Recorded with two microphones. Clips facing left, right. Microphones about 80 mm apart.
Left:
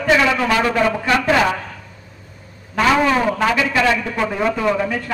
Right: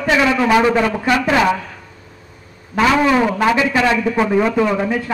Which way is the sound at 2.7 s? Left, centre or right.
Centre.